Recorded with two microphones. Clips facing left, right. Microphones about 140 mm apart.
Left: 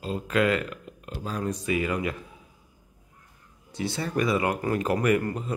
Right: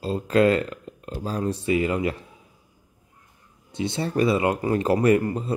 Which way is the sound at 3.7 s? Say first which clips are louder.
Right 4 dB; 25° right (ahead or behind).